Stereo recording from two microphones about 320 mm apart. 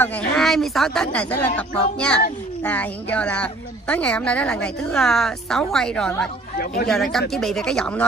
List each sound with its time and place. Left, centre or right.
0.0 s speech: centre
6.6 s speech: left
6.9 s speech: centre